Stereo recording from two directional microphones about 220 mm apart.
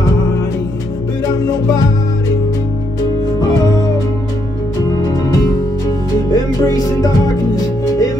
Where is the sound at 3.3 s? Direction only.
15° left (ahead or behind).